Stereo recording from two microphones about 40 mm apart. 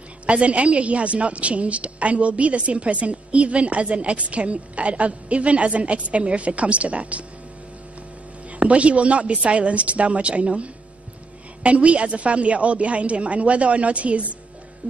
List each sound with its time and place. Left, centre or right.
0.3 s a woman's voice: right
8.5 s a woman's voice: right